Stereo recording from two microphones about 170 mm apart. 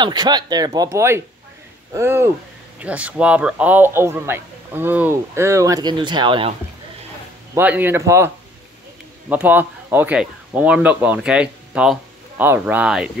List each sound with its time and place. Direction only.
0.0 s a man's voice: 25° right (ahead or behind)
7.5 s a man's voice: 10° right (ahead or behind)
9.3 s speech: 10° right (ahead or behind)